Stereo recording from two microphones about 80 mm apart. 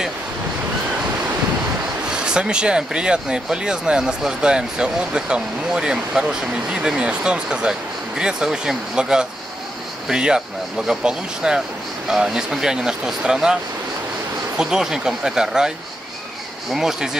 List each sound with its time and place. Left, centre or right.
2.0 s speech: centre
14.6 s speech: centre
16.7 s speech: centre